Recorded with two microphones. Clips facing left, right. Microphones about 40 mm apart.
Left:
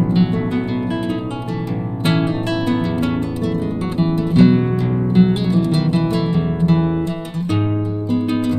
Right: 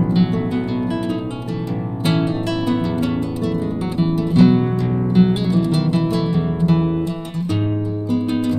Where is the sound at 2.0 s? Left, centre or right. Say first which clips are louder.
Left 1 dB; left.